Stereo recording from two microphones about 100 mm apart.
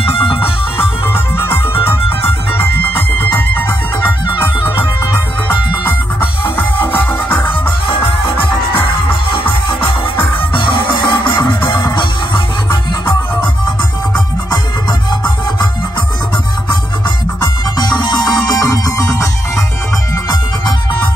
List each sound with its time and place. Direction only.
0.0 s music: 65° left (ahead or behind)
0.7 s music: 25° left (ahead or behind)
1.8 s music: 65° left (ahead or behind)
3.3 s music: 20° left (ahead or behind)
9.3 s music: 55° left (ahead or behind)
17.4 s music: 45° left (ahead or behind)